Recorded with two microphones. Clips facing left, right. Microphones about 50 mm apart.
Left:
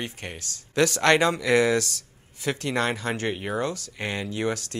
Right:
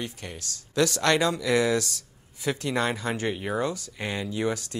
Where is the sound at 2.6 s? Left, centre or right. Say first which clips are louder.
Left 2 dB; left.